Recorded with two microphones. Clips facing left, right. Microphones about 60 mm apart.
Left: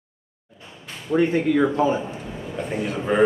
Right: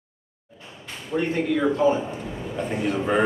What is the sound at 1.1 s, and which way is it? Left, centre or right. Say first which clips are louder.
Speech: left 6 dB; left.